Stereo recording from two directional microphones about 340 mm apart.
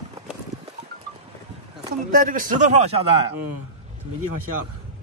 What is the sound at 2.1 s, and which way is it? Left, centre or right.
Speech, right.